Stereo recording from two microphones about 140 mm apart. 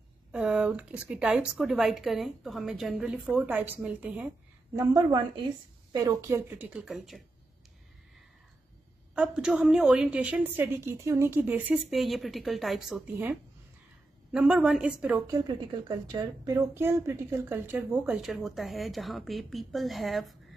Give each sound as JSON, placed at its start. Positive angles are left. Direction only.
{"t": 0.3, "sound": "speech", "side_deg": -5}
{"t": 4.7, "sound": "a woman's voice", "side_deg": -30}
{"t": 9.1, "sound": "speech", "side_deg": -5}
{"t": 14.3, "sound": "speech", "side_deg": -5}
{"t": 15.3, "sound": "a woman's voice", "side_deg": -30}